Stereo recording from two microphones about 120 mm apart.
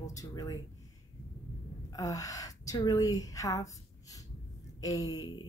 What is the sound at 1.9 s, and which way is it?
A woman's voice, 30° left (ahead or behind).